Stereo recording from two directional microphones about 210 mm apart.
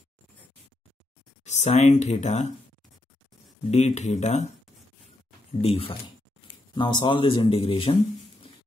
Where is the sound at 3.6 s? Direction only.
30° left (ahead or behind).